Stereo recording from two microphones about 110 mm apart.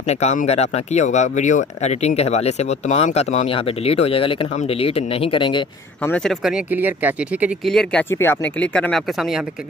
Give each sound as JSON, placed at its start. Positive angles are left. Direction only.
{"t": 0.1, "sound": "speech", "side_deg": 85}
{"t": 6.7, "sound": "speech", "side_deg": -15}
{"t": 7.6, "sound": "speech", "side_deg": 5}
{"t": 8.1, "sound": "speech", "side_deg": 20}